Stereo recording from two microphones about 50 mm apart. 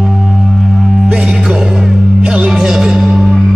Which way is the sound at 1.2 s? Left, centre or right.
Centre.